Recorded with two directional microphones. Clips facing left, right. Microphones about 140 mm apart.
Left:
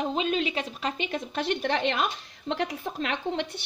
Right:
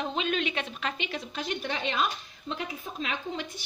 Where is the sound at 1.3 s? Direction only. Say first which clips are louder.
Left 7 dB; 70° left (ahead or behind).